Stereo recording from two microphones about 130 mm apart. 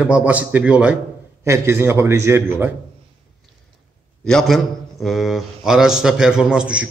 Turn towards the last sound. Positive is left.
turn(degrees=-5)  # may be behind; listen again after turning